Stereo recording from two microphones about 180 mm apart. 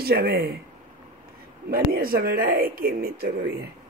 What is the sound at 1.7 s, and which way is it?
Speech, 55° right (ahead or behind).